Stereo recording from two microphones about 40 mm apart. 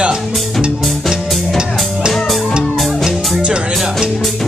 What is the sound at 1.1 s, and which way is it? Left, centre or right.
Music, centre.